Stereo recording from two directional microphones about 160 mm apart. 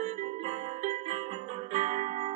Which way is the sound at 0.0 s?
45° right (ahead or behind).